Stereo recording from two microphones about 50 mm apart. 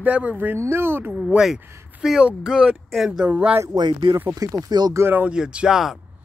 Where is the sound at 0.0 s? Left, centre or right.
Right.